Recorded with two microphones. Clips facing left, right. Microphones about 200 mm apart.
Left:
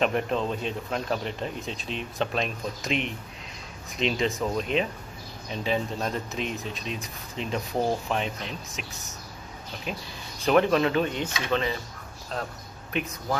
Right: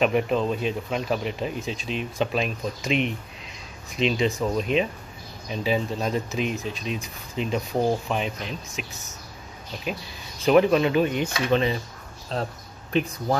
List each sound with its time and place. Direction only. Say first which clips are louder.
0.0 s speech: right 4 dB; 5° right (ahead or behind)
10.4 s speech: right 3 dB; 5° right (ahead or behind)
12.3 s speech: right 4 dB; 30° right (ahead or behind)